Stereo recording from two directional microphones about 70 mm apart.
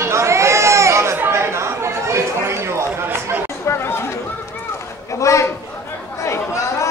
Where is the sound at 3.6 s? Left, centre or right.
Left.